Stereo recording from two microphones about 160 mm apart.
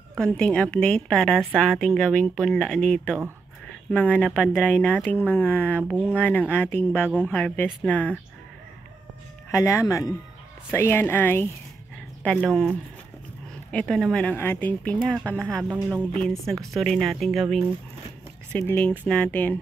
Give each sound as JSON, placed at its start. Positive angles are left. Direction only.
{"t": 0.2, "sound": "a woman's voice", "side_deg": 5}
{"t": 5.9, "sound": "speech", "side_deg": -10}
{"t": 6.1, "sound": "speech", "side_deg": 10}
{"t": 9.5, "sound": "a woman's voice", "side_deg": 20}
{"t": 18.5, "sound": "speech", "side_deg": 10}